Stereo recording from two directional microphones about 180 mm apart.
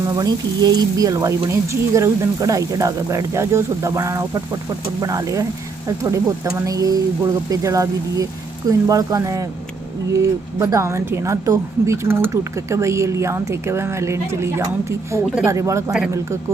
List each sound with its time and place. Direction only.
0.1 s a woman's voice: 20° right (ahead or behind)